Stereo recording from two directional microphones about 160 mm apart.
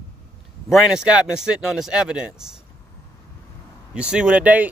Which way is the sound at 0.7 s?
5° right (ahead or behind).